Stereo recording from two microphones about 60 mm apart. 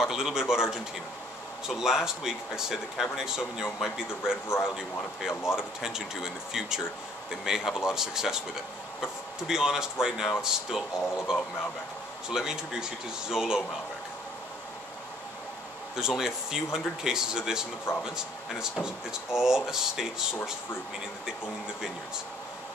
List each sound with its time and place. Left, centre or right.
0.0 s speech: centre
5.3 s speech: left
5.6 s speech: centre
16.0 s speech: centre